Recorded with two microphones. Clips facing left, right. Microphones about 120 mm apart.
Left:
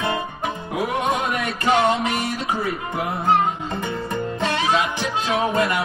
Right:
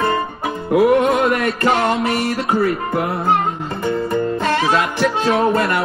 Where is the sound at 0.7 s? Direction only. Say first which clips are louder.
Right 10 dB; 60° right (ahead or behind).